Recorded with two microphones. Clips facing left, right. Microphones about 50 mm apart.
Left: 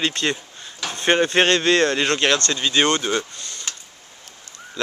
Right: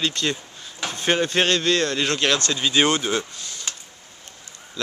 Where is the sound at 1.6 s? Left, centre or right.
Left.